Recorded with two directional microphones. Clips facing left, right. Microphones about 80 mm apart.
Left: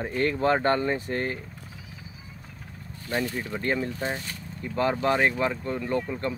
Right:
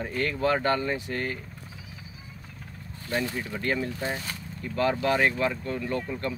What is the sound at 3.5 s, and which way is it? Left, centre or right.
Speech, left.